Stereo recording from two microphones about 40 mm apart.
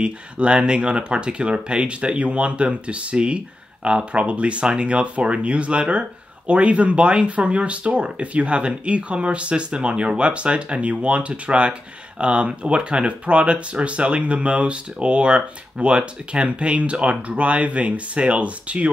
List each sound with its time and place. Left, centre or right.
0.0 s speech: right